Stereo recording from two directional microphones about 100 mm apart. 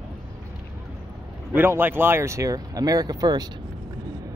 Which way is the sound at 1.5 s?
20° right (ahead or behind).